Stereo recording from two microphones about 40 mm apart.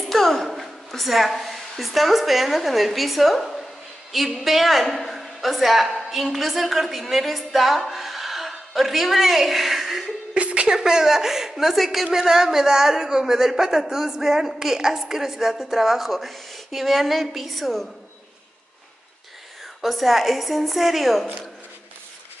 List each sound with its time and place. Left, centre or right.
0.1 s a woman's voice: centre
10.3 s a sound: right
10.8 s speech: centre
19.8 s a woman's voice: centre